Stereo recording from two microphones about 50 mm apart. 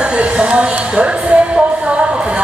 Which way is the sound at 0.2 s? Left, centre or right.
Right.